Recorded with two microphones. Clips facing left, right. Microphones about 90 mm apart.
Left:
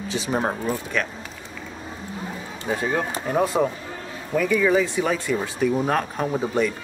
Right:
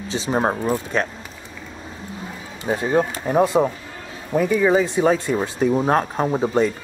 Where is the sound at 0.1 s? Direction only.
30° right (ahead or behind).